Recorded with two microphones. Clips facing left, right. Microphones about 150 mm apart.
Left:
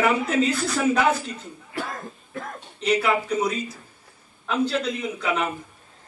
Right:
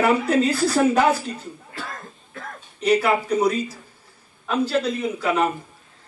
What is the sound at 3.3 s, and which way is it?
Speech, 35° right (ahead or behind).